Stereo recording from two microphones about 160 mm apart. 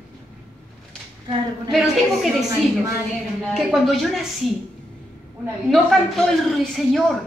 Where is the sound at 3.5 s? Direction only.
Centre (ahead or behind).